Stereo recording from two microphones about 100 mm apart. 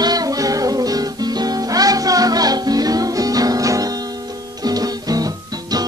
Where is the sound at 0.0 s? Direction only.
40° right (ahead or behind).